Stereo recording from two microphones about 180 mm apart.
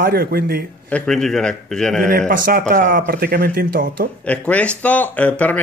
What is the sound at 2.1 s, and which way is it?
Speech, 50° right (ahead or behind).